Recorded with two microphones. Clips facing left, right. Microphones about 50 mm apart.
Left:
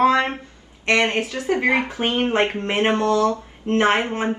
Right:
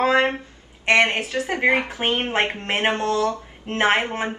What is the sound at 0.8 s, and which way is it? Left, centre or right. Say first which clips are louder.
A woman's voice: right 1 dB; right.